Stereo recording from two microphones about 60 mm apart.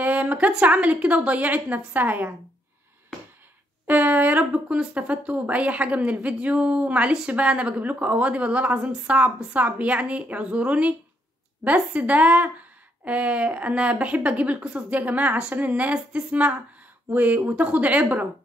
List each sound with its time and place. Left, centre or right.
0.0 s a sound: right
0.5 s speech: centre
3.8 s speech: right